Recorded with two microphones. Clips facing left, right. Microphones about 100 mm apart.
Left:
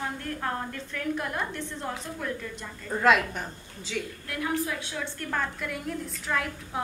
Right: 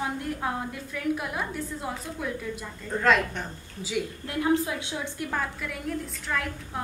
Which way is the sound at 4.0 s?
10° right (ahead or behind).